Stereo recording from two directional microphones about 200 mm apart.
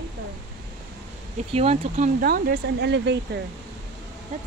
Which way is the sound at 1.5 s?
30° right (ahead or behind).